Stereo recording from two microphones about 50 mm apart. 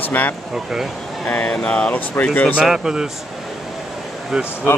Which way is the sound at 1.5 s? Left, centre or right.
Left.